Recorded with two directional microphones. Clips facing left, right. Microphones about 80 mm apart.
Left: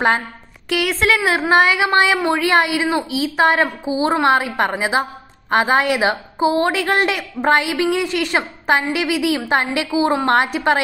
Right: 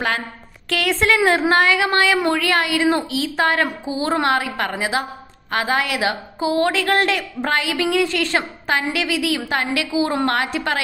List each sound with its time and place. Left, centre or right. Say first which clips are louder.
0.7 s a woman's voice: left 1 dB; centre
1.5 s a woman's voice: left 2 dB; centre